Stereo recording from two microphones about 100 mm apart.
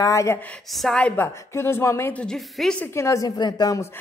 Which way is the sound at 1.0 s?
25° left (ahead or behind).